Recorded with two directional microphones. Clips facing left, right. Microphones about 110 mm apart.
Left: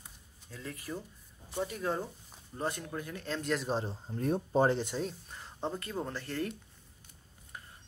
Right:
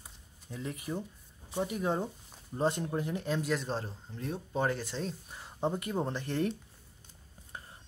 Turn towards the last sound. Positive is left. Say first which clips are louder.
# right 2 dB
turn(degrees=-25)  # may be behind; listen again after turning